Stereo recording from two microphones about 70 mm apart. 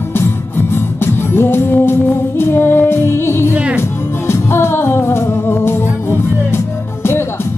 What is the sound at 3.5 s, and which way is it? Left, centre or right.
Speech, centre.